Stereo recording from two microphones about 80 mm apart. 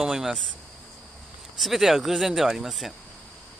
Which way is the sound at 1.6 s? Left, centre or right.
Centre.